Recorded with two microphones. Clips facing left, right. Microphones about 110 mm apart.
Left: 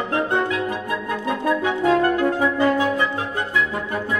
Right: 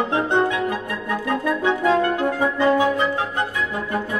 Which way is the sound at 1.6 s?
20° right (ahead or behind).